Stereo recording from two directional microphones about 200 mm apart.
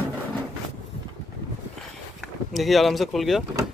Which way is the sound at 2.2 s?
Centre (ahead or behind).